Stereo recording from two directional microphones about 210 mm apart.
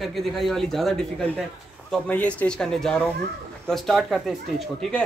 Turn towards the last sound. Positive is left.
turn(degrees=0)  # may be behind; listen again after turning